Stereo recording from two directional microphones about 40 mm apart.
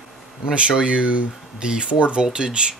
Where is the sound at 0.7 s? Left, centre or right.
Right.